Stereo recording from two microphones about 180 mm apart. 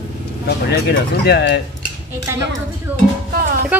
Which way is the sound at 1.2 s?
70° left (ahead or behind).